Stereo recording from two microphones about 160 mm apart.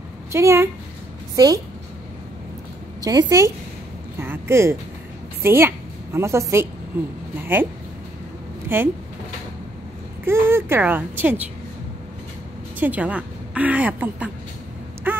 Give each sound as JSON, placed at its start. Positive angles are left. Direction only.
{"t": 0.3, "sound": "a woman's voice", "side_deg": -15}
{"t": 3.0, "sound": "a woman's voice", "side_deg": -25}
{"t": 8.6, "sound": "speech", "side_deg": -15}
{"t": 10.2, "sound": "a woman's voice", "side_deg": -15}
{"t": 12.7, "sound": "speech", "side_deg": -10}
{"t": 15.1, "sound": "a sound", "side_deg": -10}